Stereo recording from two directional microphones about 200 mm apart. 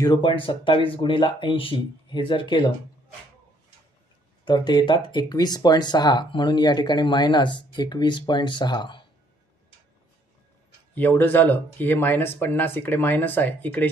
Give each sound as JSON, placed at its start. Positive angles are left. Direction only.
{"t": 0.0, "sound": "speech", "side_deg": 20}
{"t": 4.5, "sound": "speech", "side_deg": 20}
{"t": 11.0, "sound": "speech", "side_deg": 10}